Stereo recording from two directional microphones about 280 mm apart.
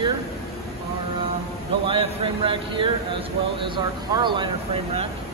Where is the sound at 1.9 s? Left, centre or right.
Centre.